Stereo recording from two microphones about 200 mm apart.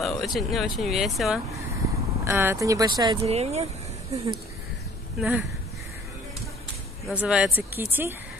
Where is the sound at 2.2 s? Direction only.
15° right (ahead or behind); by 3.7 s 30° right (ahead or behind).